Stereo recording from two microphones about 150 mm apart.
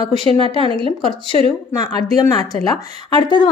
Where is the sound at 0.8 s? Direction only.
35° right (ahead or behind).